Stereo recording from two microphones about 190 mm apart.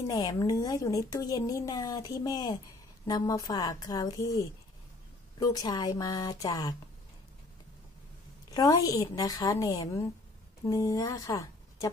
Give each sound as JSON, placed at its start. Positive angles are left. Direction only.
{"t": 0.0, "sound": "a woman's voice", "side_deg": 20}
{"t": 8.5, "sound": "a woman's voice", "side_deg": 20}